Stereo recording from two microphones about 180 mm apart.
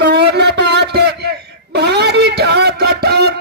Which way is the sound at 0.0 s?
65° right (ahead or behind).